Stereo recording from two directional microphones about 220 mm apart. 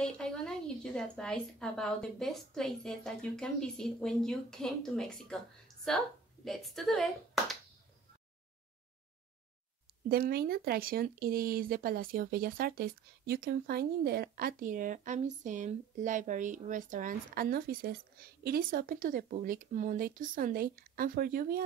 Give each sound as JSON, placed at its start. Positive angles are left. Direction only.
{"t": 0.0, "sound": "a woman's voice", "side_deg": 5}
{"t": 10.0, "sound": "speech", "side_deg": -45}